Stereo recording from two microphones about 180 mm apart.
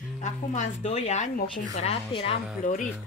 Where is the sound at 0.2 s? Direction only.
40° left (ahead or behind).